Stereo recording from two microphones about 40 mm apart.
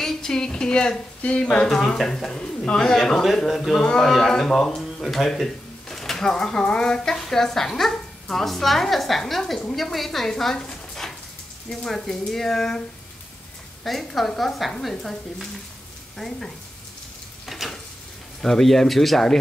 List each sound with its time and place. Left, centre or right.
0.0 s speech: centre; by 1.7 s left
1.7 s speech: centre
13.8 s speech: centre
17.5 s frying: centre
18.4 s speech: centre